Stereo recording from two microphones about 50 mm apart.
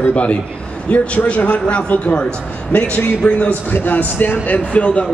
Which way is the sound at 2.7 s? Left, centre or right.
Left.